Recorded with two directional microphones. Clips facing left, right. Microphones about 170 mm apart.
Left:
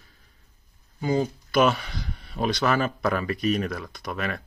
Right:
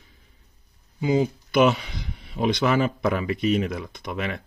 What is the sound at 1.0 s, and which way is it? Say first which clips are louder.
Speech: right 3 dB; 15° right (ahead or behind).